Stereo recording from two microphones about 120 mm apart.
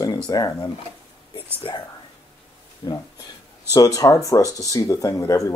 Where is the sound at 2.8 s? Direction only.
35° left (ahead or behind).